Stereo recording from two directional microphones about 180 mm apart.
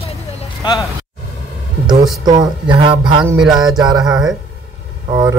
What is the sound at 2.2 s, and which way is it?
Speech, 25° right (ahead or behind).